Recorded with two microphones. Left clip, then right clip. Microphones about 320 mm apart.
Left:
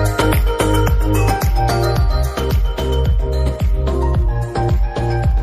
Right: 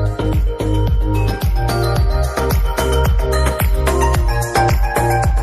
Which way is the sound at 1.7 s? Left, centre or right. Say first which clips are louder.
Right 2 dB; centre.